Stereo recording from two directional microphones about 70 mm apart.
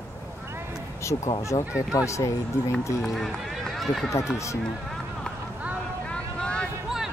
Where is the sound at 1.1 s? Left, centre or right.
Left.